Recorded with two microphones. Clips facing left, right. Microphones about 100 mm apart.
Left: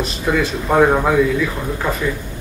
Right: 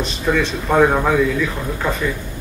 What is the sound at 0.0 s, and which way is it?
A man's voice, 5° left (ahead or behind).